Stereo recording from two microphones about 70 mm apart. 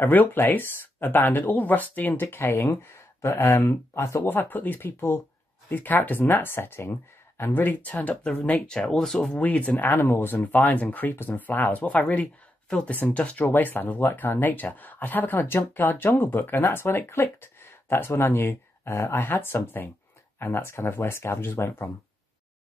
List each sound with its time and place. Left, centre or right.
0.0 s speech: left
4.2 s speech: left; by 9.4 s centre
9.4 s speech: left